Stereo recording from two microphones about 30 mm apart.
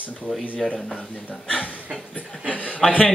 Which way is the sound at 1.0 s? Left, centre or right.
Left.